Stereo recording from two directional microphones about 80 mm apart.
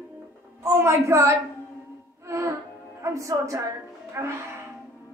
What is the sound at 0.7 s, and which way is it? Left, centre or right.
Speech, right.